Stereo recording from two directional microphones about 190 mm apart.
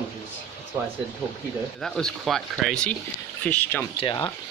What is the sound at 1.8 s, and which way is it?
Speech, centre (ahead or behind).